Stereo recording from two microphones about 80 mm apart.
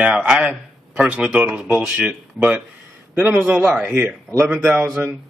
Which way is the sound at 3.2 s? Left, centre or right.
Right.